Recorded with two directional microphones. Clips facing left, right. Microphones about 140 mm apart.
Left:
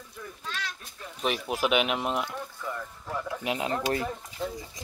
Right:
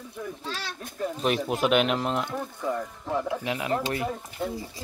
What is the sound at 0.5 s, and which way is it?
Speech, 30° right (ahead or behind).